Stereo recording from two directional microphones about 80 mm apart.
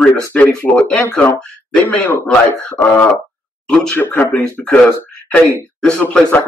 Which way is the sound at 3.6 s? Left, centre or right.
Centre.